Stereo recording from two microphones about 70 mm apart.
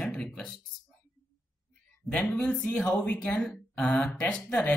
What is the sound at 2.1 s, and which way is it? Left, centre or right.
Speech, centre.